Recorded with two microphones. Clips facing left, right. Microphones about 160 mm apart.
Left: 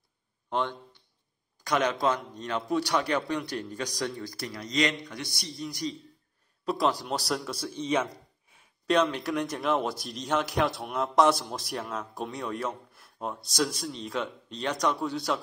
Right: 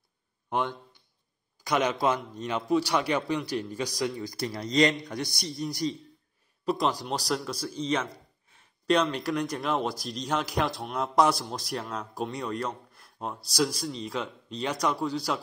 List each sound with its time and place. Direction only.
0.5 s a man's voice: 10° right (ahead or behind)
4.4 s a man's voice: 30° right (ahead or behind)
6.6 s a man's voice: centre (ahead or behind)